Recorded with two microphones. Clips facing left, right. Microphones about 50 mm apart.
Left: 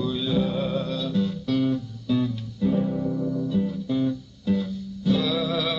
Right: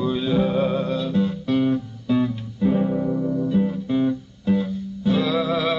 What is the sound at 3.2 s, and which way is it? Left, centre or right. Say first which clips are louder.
Guitar: right 4 dB; right.